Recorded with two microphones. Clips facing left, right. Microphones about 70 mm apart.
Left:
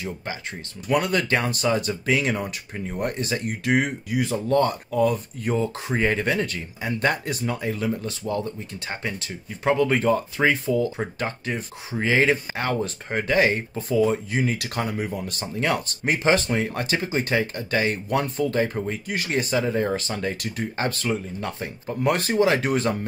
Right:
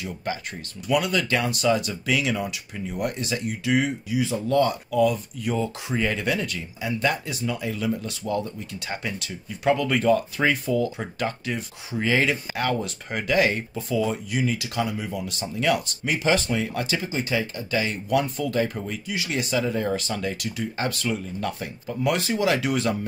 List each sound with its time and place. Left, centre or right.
0.0 s speech: left
0.8 s speech: left